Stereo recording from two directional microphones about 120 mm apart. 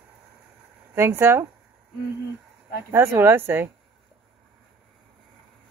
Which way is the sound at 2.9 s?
20° right (ahead or behind).